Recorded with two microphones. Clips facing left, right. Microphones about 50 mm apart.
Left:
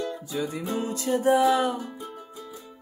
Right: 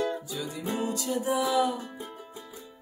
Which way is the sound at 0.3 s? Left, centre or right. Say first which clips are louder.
Left 4 dB; left.